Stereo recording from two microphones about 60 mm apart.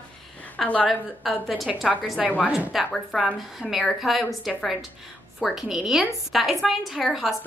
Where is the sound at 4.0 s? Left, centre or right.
Centre.